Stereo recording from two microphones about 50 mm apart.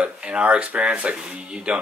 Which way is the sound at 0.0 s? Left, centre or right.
Right.